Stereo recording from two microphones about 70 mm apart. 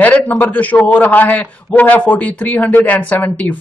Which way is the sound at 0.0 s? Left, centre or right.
Left.